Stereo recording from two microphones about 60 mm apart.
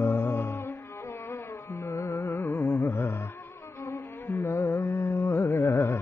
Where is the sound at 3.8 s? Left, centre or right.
Left.